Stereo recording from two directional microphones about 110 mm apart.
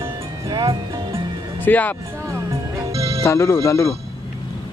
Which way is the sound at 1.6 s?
15° left (ahead or behind).